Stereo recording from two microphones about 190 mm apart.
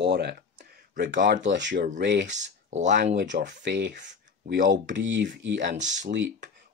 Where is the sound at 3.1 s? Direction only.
65° right (ahead or behind).